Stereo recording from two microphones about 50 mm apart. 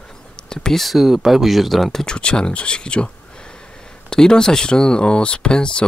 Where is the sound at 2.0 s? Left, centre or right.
Centre.